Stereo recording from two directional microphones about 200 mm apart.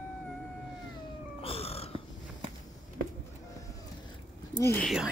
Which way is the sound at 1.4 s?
30° left (ahead or behind).